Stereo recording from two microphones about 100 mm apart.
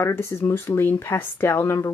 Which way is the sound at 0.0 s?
25° left (ahead or behind).